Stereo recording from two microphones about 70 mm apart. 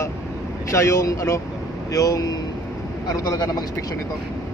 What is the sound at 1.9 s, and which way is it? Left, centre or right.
Speech, left.